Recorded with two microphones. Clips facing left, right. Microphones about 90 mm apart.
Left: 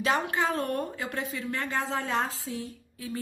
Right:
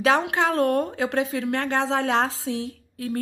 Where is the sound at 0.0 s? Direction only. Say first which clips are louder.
Right 6 dB; 90° right.